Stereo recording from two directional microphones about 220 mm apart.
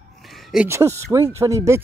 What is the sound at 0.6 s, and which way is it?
Speech, 15° right (ahead or behind).